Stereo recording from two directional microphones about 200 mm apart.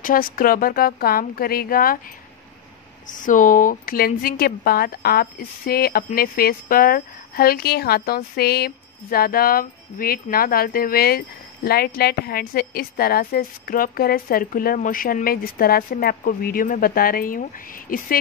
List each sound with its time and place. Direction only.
0.0 s speech: 45° left (ahead or behind)
3.1 s speech: 40° left (ahead or behind)